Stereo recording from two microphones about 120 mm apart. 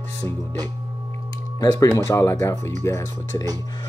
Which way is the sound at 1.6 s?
30° left (ahead or behind).